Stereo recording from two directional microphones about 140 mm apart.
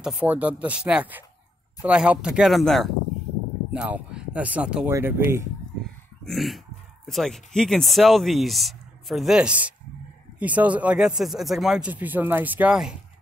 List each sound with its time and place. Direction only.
0.0 s speech: 5° right (ahead or behind)
4.9 s speech: 20° right (ahead or behind)
6.2 s speech: centre (ahead or behind)